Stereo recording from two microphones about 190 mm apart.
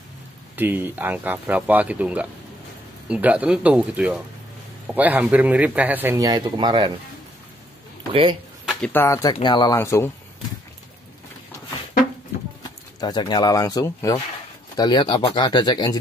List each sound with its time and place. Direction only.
0.6 s speech: 10° right (ahead or behind)
6.1 s speech: 20° right (ahead or behind)
8.1 s speech: 30° right (ahead or behind)
8.6 s speech: 10° left (ahead or behind)
13.0 s speech: 25° left (ahead or behind)